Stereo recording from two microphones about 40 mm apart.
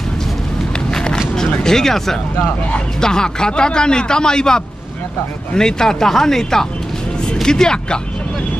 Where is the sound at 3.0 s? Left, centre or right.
Centre.